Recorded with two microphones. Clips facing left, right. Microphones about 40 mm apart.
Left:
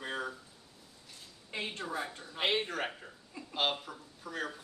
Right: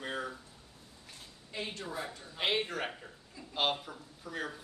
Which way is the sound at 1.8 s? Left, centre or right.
Centre.